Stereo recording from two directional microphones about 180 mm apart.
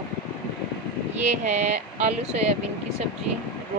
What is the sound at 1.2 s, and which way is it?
Speech, 40° right (ahead or behind).